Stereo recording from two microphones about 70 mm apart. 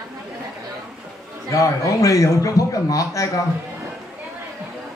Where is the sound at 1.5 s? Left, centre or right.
Left.